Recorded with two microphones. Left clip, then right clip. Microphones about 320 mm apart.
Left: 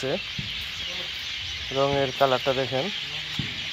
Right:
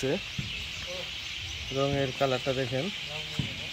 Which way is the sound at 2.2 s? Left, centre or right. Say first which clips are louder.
Left 7 dB; left.